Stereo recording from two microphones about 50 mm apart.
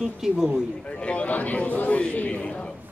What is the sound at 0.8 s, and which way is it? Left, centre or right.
A man's voice, left.